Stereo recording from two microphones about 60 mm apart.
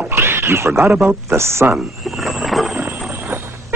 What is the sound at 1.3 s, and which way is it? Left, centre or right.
Speech, right.